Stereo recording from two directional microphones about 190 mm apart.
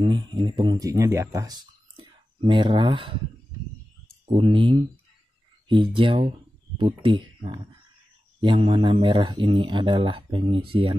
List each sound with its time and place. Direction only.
0.0 s speech: 25° right (ahead or behind)
4.3 s speech: 30° right (ahead or behind)